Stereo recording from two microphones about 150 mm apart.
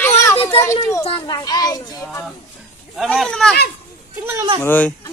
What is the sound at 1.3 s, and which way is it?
Speech, 25° left (ahead or behind).